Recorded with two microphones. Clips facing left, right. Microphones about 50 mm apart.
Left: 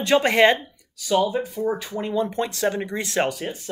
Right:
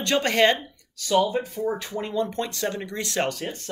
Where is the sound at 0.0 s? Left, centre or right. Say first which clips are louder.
Left 4 dB; centre.